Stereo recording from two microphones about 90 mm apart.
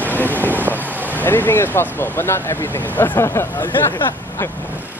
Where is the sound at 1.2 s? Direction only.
25° left (ahead or behind).